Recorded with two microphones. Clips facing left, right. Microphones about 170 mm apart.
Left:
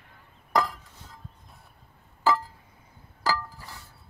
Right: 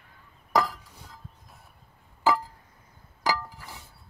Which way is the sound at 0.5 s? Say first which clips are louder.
Right 1 dB; centre (ahead or behind).